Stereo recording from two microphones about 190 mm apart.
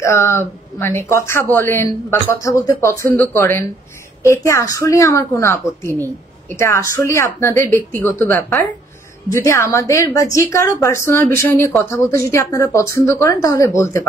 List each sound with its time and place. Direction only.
0.0 s a woman's voice: 15° left (ahead or behind)